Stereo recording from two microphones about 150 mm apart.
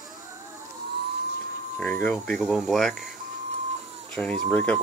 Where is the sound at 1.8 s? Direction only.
10° left (ahead or behind).